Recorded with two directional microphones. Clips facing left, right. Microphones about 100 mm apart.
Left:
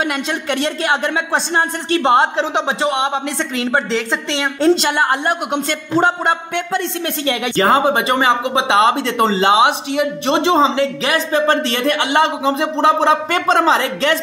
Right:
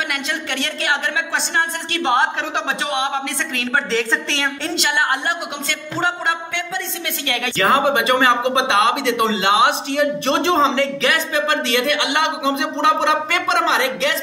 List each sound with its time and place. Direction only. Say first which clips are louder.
0.8 s a woman's voice: left 1 dB; 35° left (ahead or behind)
3.5 s a woman's voice: left 2 dB; 15° left (ahead or behind)
4.6 s speech: left 10 dB; 30° left (ahead or behind)
7.2 s a woman's voice: left 3 dB; 25° left (ahead or behind)
8.9 s speech: left 2 dB; 40° left (ahead or behind)
9.5 s a woman's voice: left 3 dB; 20° left (ahead or behind)
11.0 s speech: left 3 dB; 30° left (ahead or behind)